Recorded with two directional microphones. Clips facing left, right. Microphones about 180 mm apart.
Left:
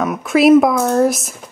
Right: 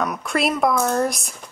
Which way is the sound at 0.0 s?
Centre (ahead or behind).